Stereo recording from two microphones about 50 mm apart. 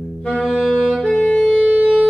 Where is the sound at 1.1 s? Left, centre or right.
Left.